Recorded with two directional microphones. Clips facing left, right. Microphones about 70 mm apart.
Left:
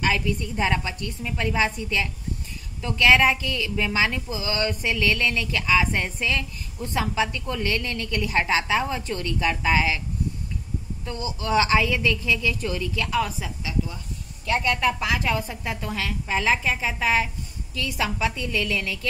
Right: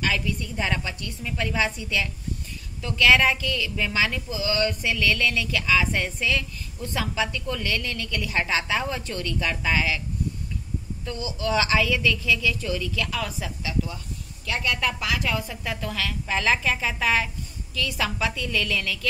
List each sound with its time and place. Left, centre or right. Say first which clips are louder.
0.2 s a woman's voice: left 3 dB; centre
11.1 s a woman's voice: even; left; by 13.7 s centre
14.4 s a woman's voice: left 4 dB; left; by 18.9 s centre